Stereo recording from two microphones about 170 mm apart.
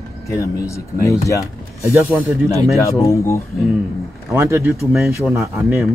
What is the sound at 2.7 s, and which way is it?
Speech, 15° left (ahead or behind).